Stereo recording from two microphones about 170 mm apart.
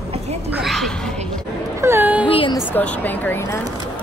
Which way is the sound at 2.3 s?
30° left (ahead or behind).